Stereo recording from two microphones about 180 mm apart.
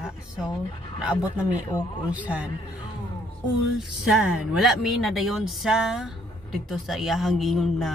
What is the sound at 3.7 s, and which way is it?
Speech, centre (ahead or behind).